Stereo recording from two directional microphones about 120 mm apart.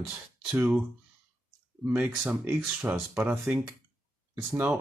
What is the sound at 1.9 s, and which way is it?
Speech, 10° right (ahead or behind).